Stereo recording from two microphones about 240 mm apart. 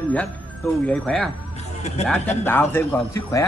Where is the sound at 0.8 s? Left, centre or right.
Centre.